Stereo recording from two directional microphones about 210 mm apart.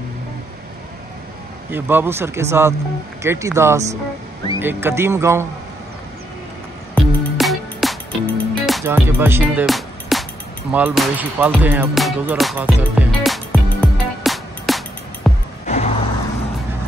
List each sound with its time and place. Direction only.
1.7 s speech: 10° right (ahead or behind)
7.0 s music: centre (ahead or behind)
8.8 s speech: 10° right (ahead or behind)
10.7 s music: 5° right (ahead or behind)
15.6 s vehicle: 35° left (ahead or behind)